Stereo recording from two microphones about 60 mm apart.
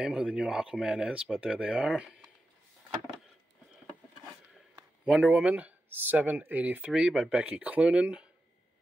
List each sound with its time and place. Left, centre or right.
0.0 s speech: centre
5.0 s speech: right
6.9 s speech: centre
7.2 s speech: right